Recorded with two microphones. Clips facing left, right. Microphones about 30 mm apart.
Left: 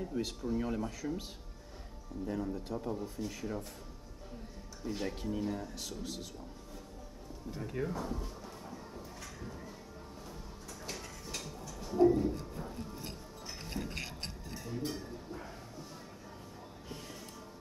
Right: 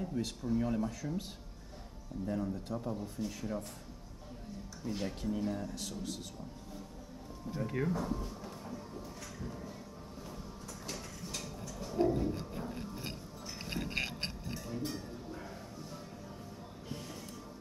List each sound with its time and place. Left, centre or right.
0.1 s speech: centre
2.2 s speech: centre
4.8 s speech: centre
7.5 s speech: centre
10.9 s a sound: centre
12.1 s speech: centre
13.6 s a sound: right
14.6 s music: centre